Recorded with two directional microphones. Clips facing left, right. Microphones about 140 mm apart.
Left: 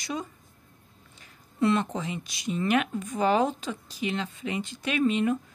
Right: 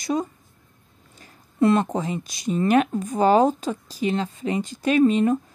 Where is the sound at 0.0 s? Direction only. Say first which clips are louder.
Right 9 dB; 40° right (ahead or behind).